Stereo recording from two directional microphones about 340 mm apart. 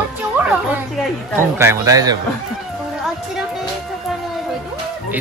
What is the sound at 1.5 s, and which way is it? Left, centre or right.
Speech, centre.